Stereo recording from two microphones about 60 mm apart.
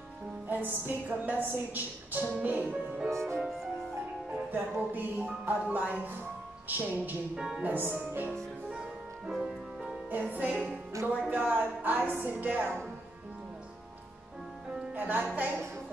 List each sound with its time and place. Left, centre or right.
0.5 s a woman's voice: right
3.2 s music: centre
4.5 s music: right
7.3 s speech: centre
7.6 s music: right
8.6 s music: centre
9.3 s music: centre
10.1 s music: right
11.3 s a woman's voice: right
15.0 s a woman's voice: right